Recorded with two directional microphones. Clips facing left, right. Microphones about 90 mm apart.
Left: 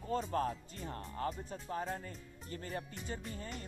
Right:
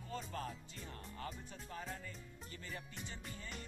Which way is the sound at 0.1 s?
45° left (ahead or behind).